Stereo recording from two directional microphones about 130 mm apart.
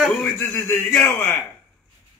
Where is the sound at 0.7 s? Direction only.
20° left (ahead or behind).